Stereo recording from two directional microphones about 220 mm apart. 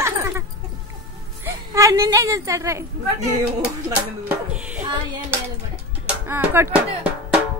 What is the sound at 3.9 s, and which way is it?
A woman's voice, 5° right (ahead or behind).